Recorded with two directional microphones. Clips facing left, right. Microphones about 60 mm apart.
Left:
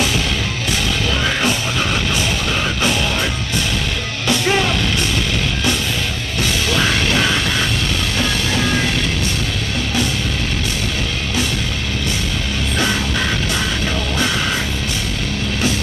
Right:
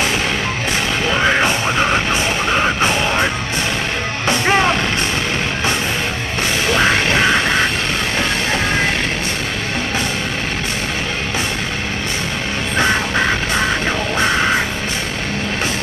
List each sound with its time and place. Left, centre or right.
1.1 s music: right
4.3 s music: right
6.7 s music: right
12.7 s music: right